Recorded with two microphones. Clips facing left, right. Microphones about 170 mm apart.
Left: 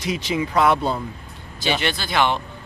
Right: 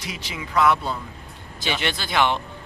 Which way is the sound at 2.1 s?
10° left (ahead or behind).